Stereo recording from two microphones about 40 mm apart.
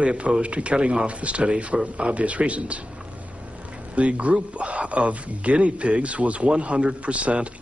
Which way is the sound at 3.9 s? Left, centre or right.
Right.